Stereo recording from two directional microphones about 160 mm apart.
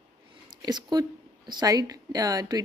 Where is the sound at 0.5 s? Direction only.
25° right (ahead or behind).